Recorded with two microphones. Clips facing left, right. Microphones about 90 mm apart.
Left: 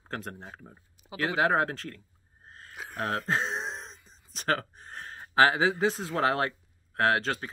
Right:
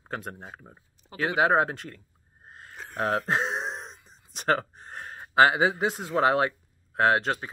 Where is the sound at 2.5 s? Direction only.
15° right (ahead or behind).